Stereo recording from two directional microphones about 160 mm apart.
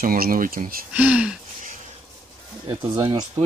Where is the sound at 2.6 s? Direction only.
25° right (ahead or behind).